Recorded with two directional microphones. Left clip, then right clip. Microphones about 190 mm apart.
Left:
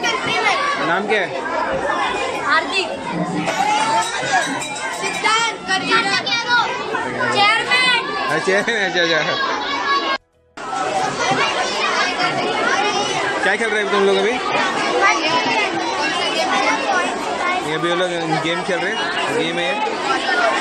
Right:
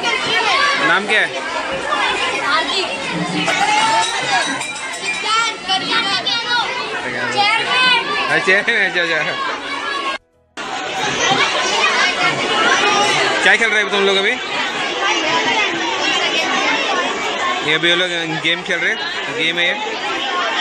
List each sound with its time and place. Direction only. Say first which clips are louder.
5.7 s speech: left 3 dB; 10° left (ahead or behind)
8.3 s speech: right 3 dB; 5° left (ahead or behind)
13.5 s speech: right 5 dB; 5° right (ahead or behind)
17.6 s speech: right 5 dB; 5° right (ahead or behind)